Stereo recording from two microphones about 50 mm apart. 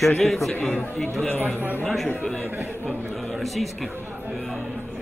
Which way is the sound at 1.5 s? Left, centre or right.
Right.